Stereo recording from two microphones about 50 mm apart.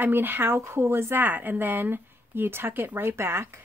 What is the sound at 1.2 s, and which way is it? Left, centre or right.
Speech, right.